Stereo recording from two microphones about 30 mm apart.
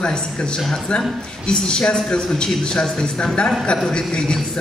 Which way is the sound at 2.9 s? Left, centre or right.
Left.